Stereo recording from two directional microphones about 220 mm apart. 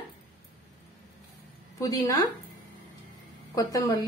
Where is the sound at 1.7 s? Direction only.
15° left (ahead or behind).